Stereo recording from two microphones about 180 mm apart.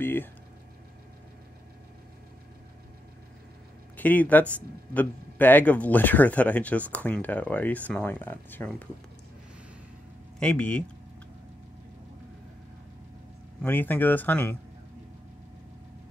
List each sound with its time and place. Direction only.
0.0 s speech: 10° left (ahead or behind)
3.9 s speech: 10° left (ahead or behind)
10.4 s speech: 5° left (ahead or behind)
13.6 s speech: 10° left (ahead or behind)